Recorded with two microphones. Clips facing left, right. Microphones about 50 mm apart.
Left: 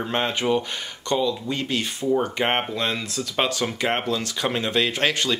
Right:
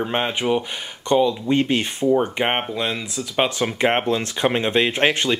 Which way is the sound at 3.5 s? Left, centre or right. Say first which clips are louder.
Right 4 dB; right.